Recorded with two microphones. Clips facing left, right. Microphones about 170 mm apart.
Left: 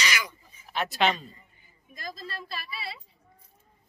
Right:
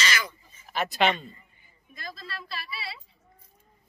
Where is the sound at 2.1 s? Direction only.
40° left (ahead or behind).